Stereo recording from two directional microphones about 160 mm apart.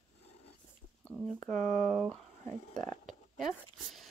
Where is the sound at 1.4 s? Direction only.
50° right (ahead or behind).